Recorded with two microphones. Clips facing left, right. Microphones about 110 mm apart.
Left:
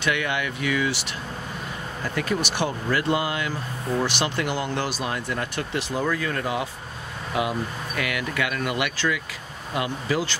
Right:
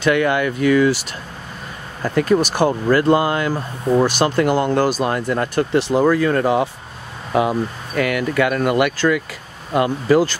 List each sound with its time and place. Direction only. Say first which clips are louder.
0.0 s speech: right 9 dB; 45° right (ahead or behind)
2.0 s speech: right 10 dB; 45° right (ahead or behind)